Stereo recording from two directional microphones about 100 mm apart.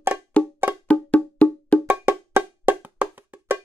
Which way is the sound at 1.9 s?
20° right (ahead or behind).